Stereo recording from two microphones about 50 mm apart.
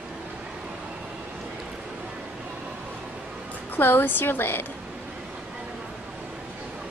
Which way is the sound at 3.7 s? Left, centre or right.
Left.